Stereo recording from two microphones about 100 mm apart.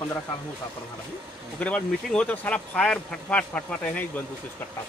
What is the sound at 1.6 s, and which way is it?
Speech, 15° left (ahead or behind).